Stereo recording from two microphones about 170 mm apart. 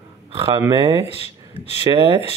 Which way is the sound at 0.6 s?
20° right (ahead or behind).